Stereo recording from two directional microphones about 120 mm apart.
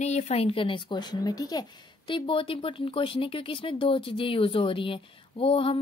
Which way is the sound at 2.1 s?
45° left (ahead or behind).